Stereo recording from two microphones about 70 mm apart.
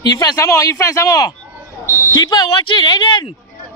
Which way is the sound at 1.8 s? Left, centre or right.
Left.